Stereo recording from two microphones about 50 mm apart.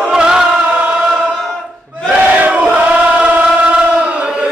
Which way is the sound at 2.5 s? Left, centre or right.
Right.